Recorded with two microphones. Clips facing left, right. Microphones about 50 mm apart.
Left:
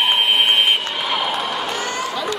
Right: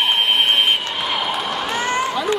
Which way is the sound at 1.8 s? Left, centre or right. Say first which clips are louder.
Right 4 dB; right.